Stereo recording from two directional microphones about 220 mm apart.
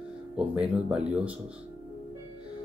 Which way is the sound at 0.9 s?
5° right (ahead or behind).